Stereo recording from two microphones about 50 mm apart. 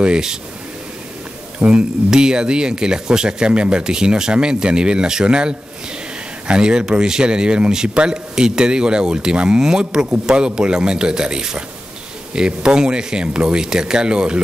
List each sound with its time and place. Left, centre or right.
0.0 s speech: centre
1.7 s speech: centre